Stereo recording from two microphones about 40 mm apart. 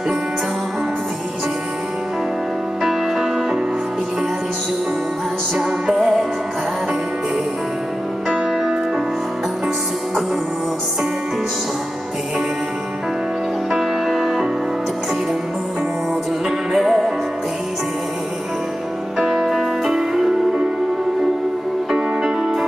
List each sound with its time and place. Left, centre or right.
2.8 s music: centre
14.0 s music: centre
16.4 s music: centre
19.1 s music: centre
21.9 s music: centre